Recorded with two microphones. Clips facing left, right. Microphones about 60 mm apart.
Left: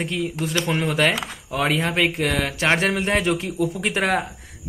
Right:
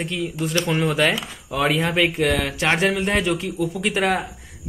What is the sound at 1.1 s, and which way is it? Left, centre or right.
Speech, left.